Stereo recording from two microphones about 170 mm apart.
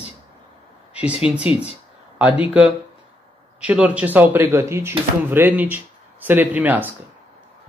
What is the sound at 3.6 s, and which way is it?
Speech, 5° right (ahead or behind).